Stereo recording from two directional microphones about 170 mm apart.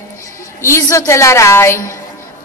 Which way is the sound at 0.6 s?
15° left (ahead or behind).